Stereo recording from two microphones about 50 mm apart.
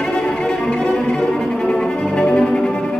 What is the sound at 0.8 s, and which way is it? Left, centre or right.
Cello, centre.